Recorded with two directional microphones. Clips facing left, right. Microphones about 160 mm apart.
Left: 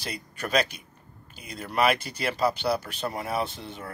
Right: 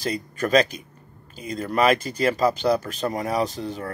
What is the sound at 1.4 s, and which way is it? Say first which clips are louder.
Speech: right 4 dB; 40° right (ahead or behind).